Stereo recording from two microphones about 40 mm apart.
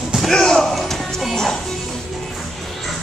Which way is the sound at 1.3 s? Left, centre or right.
Centre.